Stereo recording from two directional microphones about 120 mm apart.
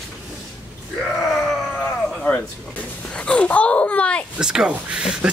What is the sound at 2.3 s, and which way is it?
Speech, 10° left (ahead or behind).